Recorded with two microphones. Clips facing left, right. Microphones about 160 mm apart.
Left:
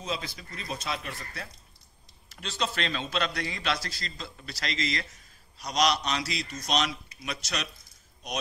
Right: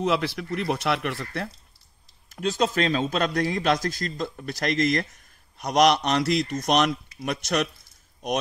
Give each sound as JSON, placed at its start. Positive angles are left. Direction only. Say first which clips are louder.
{"t": 0.0, "sound": "speech", "louder": "right 11 dB", "side_deg": -70}
{"t": 2.2, "sound": "a man's voice", "louder": "right 9 dB", "side_deg": -45}